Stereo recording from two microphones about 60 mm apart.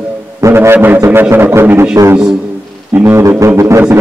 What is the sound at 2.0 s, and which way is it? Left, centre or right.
Speech, right.